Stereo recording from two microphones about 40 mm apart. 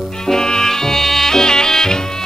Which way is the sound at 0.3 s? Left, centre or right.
Centre.